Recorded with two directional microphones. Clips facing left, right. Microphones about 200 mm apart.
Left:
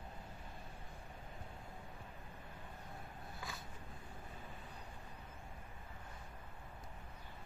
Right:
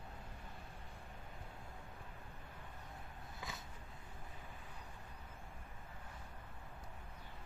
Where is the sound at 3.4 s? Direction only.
20° right (ahead or behind).